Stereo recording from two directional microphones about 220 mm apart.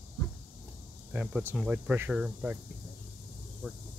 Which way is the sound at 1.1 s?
5° right (ahead or behind).